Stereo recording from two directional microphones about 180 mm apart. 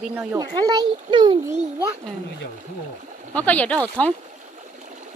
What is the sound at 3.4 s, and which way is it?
Speech, 10° left (ahead or behind).